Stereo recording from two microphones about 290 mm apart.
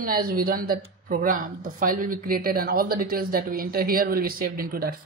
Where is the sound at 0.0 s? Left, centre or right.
Right.